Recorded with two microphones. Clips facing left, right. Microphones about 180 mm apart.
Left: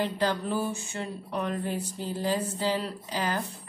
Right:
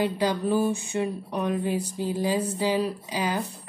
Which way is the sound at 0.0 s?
10° right (ahead or behind).